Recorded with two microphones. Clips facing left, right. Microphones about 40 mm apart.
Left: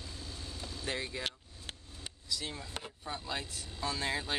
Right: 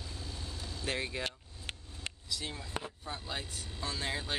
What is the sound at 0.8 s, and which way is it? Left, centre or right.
Speech, right.